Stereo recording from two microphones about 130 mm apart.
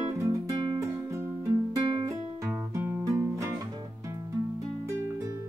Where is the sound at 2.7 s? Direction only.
20° right (ahead or behind).